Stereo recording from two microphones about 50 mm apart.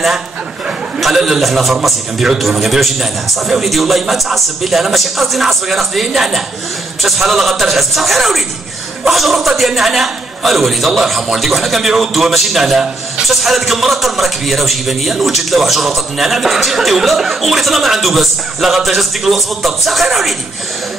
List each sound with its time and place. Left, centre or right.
1.0 s a man's voice: centre